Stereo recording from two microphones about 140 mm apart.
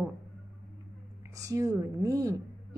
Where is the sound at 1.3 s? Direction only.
25° right (ahead or behind).